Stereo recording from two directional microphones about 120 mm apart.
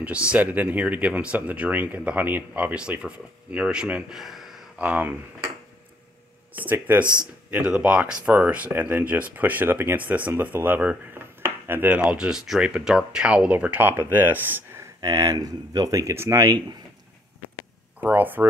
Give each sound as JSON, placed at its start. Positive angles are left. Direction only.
{"t": 0.0, "sound": "speech", "side_deg": -10}
{"t": 6.5, "sound": "speech", "side_deg": -15}
{"t": 15.0, "sound": "speech", "side_deg": -30}
{"t": 18.0, "sound": "speech", "side_deg": -15}